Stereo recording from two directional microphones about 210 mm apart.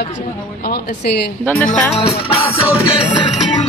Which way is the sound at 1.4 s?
5° left (ahead or behind).